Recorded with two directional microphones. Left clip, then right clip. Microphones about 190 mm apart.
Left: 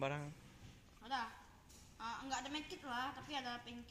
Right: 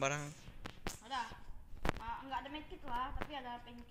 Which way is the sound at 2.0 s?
90° left.